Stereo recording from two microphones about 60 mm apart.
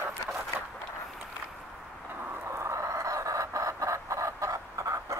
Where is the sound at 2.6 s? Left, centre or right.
Right.